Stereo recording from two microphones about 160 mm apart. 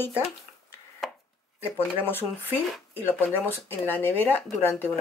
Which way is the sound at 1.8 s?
15° left (ahead or behind).